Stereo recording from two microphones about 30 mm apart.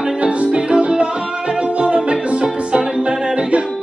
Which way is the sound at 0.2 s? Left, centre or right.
Right.